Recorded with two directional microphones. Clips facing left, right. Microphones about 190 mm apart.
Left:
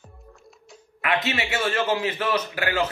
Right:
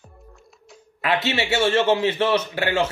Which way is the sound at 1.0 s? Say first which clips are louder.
Right 3 dB; 30° right (ahead or behind).